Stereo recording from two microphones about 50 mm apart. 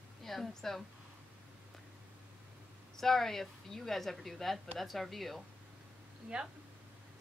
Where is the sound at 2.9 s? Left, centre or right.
Centre.